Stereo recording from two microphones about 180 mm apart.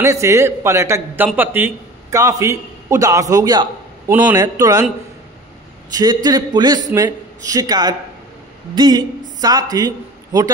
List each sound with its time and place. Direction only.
0.0 s a man's voice: 15° right (ahead or behind)
5.9 s a man's voice: 20° right (ahead or behind)